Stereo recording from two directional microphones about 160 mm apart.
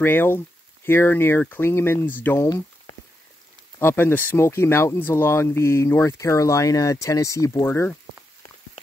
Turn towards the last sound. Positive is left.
turn(degrees=15)  # may be behind; listen again after turning